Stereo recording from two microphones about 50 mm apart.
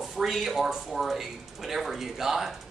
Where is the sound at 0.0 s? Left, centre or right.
Centre.